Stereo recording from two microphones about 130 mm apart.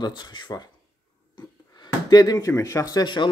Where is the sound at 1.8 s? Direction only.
30° left (ahead or behind).